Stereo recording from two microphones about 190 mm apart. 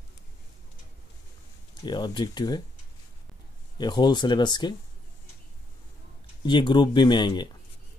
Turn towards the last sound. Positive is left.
turn(degrees=25)  # may be behind; listen again after turning